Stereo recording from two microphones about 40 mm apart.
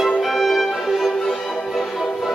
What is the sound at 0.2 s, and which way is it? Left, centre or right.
Music, centre.